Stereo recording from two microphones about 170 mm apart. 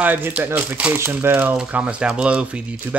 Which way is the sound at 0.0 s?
10° right (ahead or behind).